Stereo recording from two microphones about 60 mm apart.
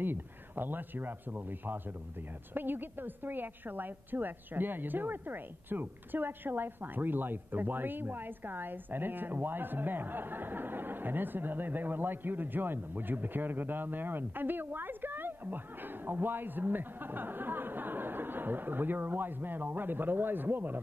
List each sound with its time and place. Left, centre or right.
0.0 s a woman's voice: right